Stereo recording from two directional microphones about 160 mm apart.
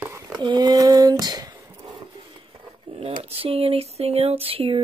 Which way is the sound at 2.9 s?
35° right (ahead or behind).